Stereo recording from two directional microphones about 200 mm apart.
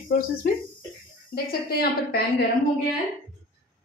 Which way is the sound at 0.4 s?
50° left (ahead or behind).